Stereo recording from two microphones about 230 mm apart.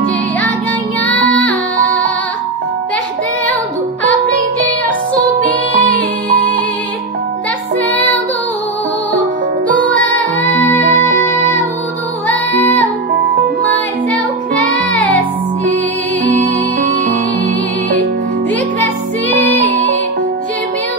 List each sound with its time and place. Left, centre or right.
1.2 s music: centre
5.7 s music: centre
12.3 s music: centre
16.3 s music: right
19.5 s music: left